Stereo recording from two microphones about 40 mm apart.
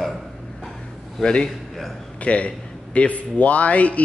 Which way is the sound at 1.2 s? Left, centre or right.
Left.